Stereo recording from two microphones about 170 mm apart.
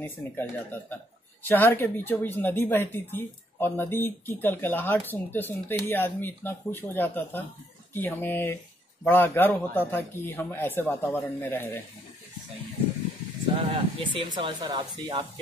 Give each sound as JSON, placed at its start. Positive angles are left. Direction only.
{"t": 0.0, "sound": "speech", "side_deg": 10}
{"t": 13.6, "sound": "speech", "side_deg": -35}